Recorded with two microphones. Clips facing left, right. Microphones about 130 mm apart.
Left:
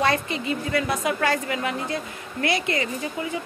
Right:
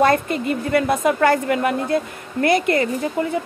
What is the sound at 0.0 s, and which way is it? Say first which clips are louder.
A woman's voice: right 6 dB; 50° right (ahead or behind).